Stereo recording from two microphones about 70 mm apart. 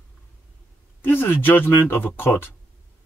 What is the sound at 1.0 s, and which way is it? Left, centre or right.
Speech, left.